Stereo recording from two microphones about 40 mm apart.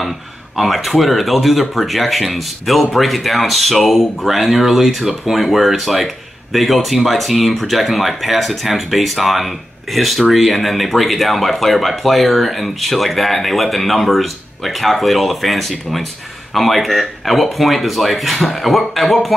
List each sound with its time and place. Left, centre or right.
0.6 s speech: centre